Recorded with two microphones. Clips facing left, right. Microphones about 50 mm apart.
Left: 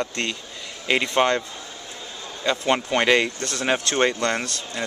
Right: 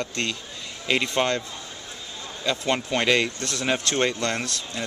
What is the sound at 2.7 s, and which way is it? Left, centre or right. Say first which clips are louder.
Speech: left 3 dB; centre.